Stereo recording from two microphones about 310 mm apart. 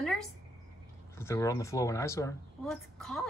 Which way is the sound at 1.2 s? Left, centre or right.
Centre.